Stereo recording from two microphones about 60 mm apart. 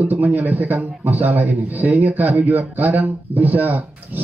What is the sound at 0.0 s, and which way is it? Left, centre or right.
A man's voice, right.